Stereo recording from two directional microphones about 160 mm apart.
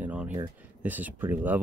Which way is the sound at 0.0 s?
10° right (ahead or behind).